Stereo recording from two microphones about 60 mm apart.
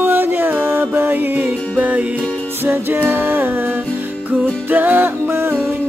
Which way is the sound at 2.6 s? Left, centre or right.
Right.